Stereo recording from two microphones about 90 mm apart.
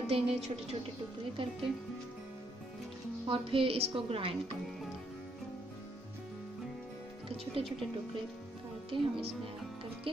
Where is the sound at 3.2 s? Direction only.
80° right.